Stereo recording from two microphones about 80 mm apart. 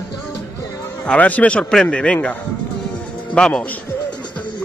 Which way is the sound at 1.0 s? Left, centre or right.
Centre.